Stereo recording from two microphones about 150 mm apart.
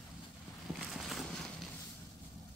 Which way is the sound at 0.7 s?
Centre (ahead or behind).